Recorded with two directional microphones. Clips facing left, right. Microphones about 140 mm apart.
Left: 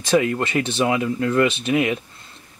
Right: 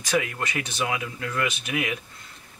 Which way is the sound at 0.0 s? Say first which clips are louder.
Left 7 dB; 30° left (ahead or behind).